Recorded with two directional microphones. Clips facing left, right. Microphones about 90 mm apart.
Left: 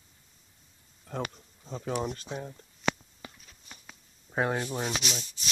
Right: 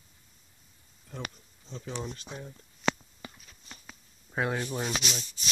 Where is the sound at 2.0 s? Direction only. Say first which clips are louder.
Left 5 dB; 60° left (ahead or behind).